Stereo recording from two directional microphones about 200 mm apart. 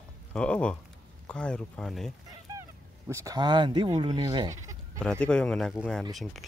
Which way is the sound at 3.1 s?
15° right (ahead or behind).